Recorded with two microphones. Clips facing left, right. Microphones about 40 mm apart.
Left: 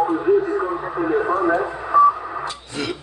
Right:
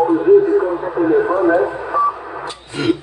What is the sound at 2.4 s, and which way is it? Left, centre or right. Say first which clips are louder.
Radio: right 8 dB; right.